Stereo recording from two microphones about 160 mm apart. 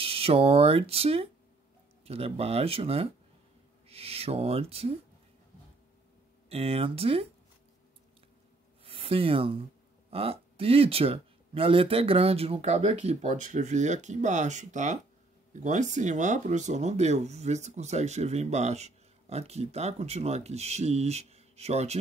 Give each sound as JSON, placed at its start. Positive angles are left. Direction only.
{"t": 0.0, "sound": "speech", "side_deg": -35}
{"t": 6.5, "sound": "speech", "side_deg": -40}
{"t": 8.8, "sound": "speech", "side_deg": -35}